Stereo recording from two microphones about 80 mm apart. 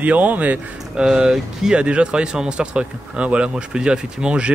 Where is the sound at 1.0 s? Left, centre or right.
Centre.